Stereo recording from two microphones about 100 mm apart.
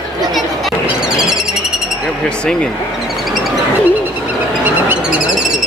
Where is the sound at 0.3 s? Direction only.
5° right (ahead or behind).